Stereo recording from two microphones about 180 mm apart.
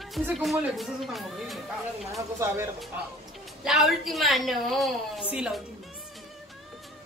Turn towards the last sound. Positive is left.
turn(degrees=-5)  # may be behind; listen again after turning